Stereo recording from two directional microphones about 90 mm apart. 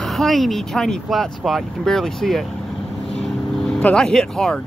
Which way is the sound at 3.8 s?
10° left (ahead or behind).